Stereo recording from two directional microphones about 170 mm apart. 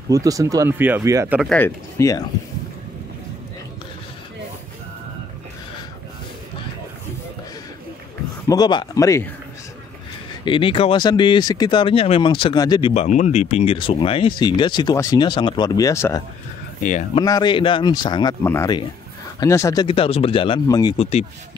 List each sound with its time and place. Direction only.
0.1 s speech: 20° right (ahead or behind)
1.4 s speech: 5° left (ahead or behind)
2.0 s speech: 20° left (ahead or behind)
8.5 s speech: 25° left (ahead or behind)
10.4 s speech: 30° left (ahead or behind)
12.9 s speech: 45° left (ahead or behind); by 18.3 s 25° left (ahead or behind)
18.4 s speech: 15° left (ahead or behind)
19.9 s speech: 35° left (ahead or behind)
20.9 s speech: 40° left (ahead or behind)